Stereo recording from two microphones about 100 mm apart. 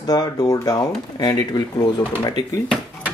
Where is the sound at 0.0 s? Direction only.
40° left (ahead or behind).